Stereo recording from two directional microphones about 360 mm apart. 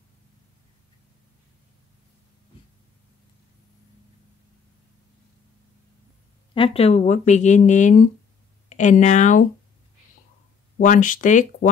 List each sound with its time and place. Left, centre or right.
6.5 s speech: centre
10.8 s speech: left